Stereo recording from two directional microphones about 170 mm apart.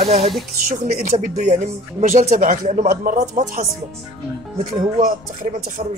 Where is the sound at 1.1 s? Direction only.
45° right (ahead or behind).